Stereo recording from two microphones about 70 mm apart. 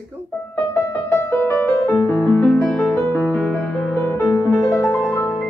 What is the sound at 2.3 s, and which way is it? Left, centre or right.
Music, left.